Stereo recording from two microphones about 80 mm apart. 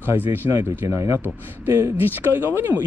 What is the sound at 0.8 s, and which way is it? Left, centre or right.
Speech, right.